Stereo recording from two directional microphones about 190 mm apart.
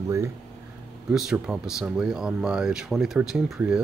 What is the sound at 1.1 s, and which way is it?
Speech, 5° right (ahead or behind).